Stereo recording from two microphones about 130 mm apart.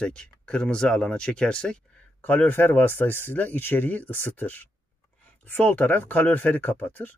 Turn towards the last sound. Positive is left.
turn(degrees=15)  # may be behind; listen again after turning